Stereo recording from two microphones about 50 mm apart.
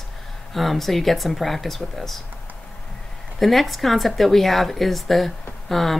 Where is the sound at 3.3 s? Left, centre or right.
Centre.